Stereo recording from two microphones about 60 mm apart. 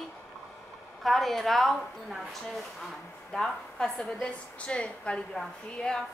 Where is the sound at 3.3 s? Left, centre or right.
Centre.